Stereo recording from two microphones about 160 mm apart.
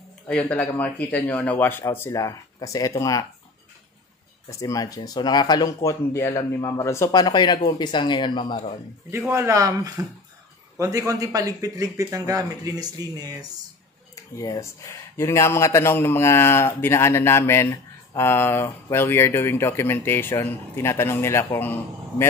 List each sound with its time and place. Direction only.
0.3 s speech: 10° left (ahead or behind)
4.5 s speech: 20° left (ahead or behind)
9.3 s speech: 20° right (ahead or behind)
14.1 s speech: 20° left (ahead or behind)